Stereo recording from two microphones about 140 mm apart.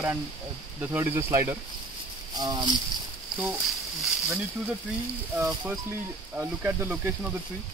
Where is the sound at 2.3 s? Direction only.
30° right (ahead or behind).